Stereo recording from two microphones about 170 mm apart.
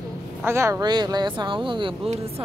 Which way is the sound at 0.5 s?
15° right (ahead or behind).